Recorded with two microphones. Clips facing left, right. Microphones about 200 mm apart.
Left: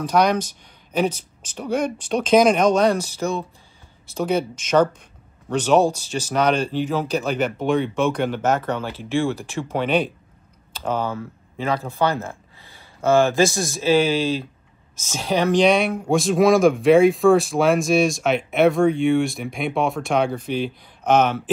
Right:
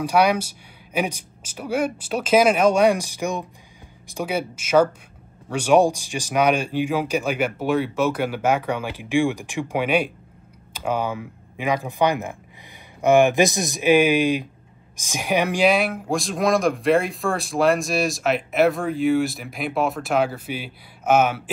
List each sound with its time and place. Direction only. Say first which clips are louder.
0.0 s speech: even; 10° right (ahead or behind)